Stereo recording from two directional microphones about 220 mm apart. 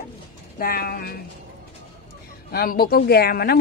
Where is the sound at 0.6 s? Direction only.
45° left (ahead or behind).